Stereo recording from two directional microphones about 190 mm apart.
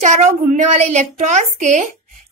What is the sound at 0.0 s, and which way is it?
A woman's voice, 40° right (ahead or behind).